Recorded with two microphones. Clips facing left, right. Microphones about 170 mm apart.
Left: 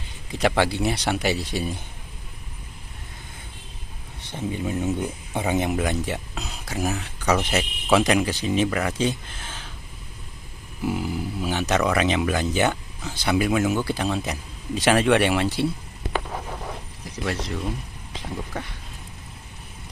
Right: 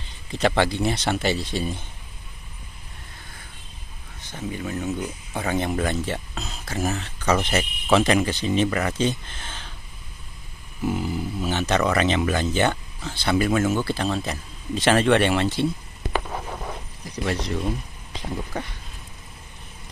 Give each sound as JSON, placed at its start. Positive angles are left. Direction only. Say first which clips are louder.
{"t": 0.3, "sound": "speech", "louder": "even", "side_deg": 10}
{"t": 4.3, "sound": "speech", "louder": "left 2 dB", "side_deg": 25}
{"t": 5.4, "sound": "speech", "louder": "left 1 dB", "side_deg": 10}
{"t": 10.8, "sound": "speech", "louder": "right 1 dB", "side_deg": 5}
{"t": 17.2, "sound": "speech", "louder": "right 2 dB", "side_deg": 0}